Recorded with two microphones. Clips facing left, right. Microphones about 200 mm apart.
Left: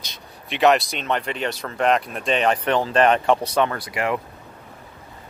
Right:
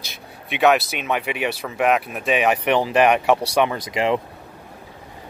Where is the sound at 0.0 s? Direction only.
Centre (ahead or behind); by 4.2 s 20° right (ahead or behind).